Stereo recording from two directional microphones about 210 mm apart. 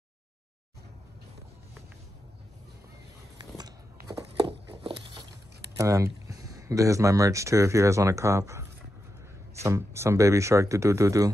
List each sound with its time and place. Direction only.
3.3 s biting: 20° right (ahead or behind)
4.1 s a sound: 25° right (ahead or behind)
5.8 s speech: 15° right (ahead or behind)